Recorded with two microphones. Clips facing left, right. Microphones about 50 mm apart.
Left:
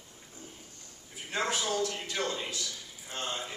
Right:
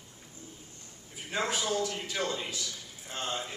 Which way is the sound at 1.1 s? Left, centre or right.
Centre.